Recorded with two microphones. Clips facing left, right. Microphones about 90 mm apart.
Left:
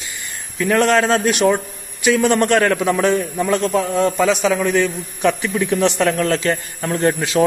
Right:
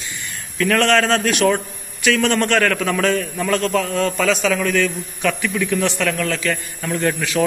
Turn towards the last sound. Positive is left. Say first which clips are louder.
# left 3 dB
turn(degrees=25)  # may be behind; listen again after turning